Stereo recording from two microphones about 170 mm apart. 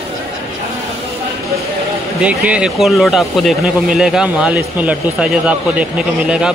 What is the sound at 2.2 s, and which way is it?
Speech, 5° right (ahead or behind).